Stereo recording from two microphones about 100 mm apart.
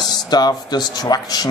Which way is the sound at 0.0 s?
45° left (ahead or behind).